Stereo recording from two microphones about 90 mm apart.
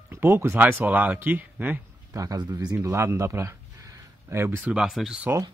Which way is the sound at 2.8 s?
35° right (ahead or behind).